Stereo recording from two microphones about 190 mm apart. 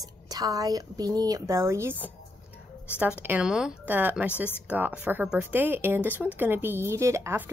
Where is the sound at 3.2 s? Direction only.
5° right (ahead or behind).